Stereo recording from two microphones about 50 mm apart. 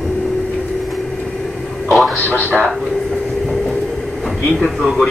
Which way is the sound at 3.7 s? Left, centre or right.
Centre.